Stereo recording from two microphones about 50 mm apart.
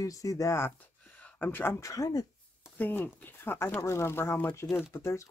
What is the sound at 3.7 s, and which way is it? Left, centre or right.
Speech, left.